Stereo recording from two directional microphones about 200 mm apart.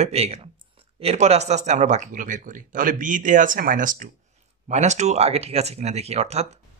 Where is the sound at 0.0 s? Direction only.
30° right (ahead or behind).